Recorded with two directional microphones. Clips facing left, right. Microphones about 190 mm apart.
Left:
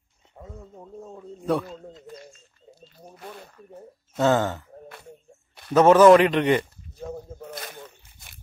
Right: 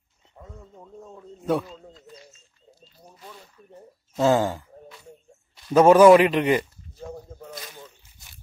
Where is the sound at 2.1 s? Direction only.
55° left (ahead or behind).